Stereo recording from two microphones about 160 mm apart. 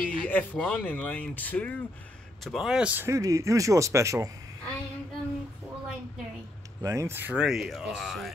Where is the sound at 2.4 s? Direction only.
Centre (ahead or behind); by 4.3 s 20° right (ahead or behind).